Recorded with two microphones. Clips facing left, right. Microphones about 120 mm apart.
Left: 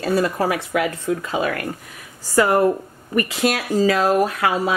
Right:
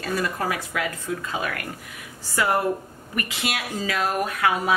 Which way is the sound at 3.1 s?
40° left (ahead or behind).